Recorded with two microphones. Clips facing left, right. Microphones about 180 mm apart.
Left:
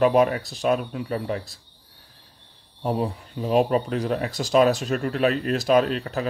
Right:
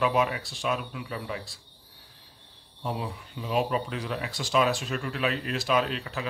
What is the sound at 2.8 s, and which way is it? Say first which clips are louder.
Speech: left 8 dB; 45° left (ahead or behind).